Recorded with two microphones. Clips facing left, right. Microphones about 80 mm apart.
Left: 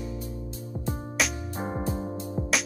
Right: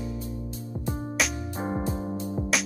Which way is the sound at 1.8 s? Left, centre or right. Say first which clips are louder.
Even; centre.